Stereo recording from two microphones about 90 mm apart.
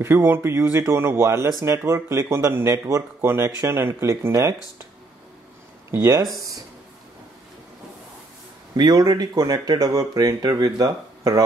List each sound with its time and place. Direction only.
0.0 s speech: 30° right (ahead or behind)
8.7 s speech: 50° right (ahead or behind)